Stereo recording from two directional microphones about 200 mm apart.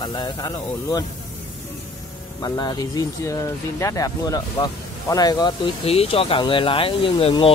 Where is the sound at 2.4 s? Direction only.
20° left (ahead or behind).